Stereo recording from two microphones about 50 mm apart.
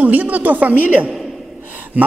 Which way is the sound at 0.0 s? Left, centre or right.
Right.